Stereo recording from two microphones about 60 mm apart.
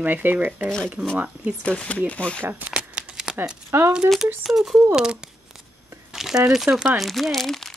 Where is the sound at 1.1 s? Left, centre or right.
Right.